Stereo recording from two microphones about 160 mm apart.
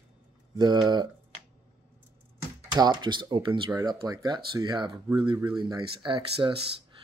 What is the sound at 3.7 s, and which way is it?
Speech, 20° right (ahead or behind).